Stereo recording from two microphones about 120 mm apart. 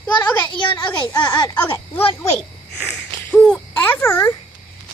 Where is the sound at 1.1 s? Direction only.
35° left (ahead or behind).